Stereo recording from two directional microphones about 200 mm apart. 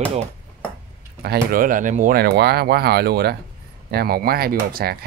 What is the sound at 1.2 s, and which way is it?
Speech, 50° right (ahead or behind).